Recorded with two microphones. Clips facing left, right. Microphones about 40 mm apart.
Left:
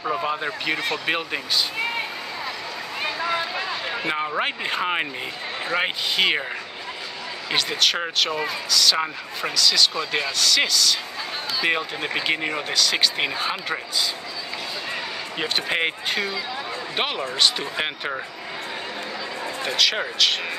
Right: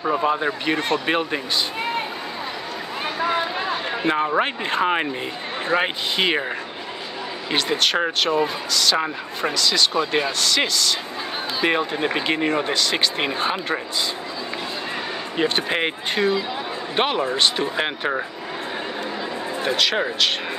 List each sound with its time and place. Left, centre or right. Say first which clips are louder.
0.2 s speech: right 4 dB; centre
3.2 s a sound: right 4 dB; centre
3.9 s speech: right 6 dB; centre
7.5 s speech: right 2 dB; centre
9.9 s speech: right 4 dB; right
10.4 s speech: even; centre
12.6 s speech: right 1 dB; centre
15.3 s speech: right 3 dB; centre
16.2 s speech: right 5 dB; centre
19.6 s speech: right 2 dB; centre